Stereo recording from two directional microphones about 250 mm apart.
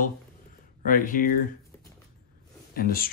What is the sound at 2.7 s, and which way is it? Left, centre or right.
Speech, left.